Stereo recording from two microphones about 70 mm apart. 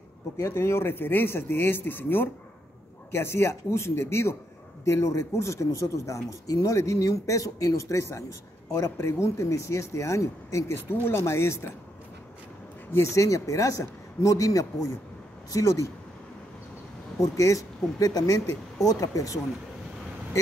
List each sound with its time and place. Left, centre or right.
0.4 s speech: left
12.9 s speech: left
17.2 s speech: left